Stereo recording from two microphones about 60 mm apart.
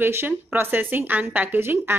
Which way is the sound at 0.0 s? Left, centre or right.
Right.